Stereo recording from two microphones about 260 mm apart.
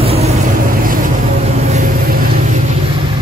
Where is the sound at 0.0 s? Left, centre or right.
Right.